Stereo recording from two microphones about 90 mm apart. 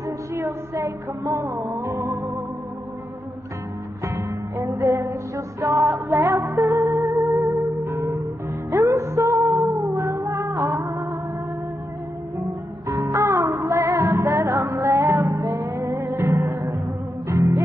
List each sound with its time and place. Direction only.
0.3 s music: 30° right (ahead or behind)
4.0 s music: 35° right (ahead or behind)
6.6 s music: 40° right (ahead or behind)
7.8 s music: 30° right (ahead or behind)
12.8 s music: 40° right (ahead or behind)